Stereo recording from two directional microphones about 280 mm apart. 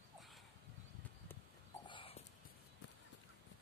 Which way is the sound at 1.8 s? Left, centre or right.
Centre.